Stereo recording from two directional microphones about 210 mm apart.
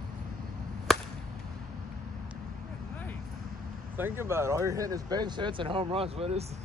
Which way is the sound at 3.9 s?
10° right (ahead or behind).